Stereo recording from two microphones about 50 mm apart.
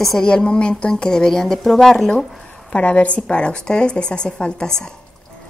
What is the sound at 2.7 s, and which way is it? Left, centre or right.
A woman's voice, left.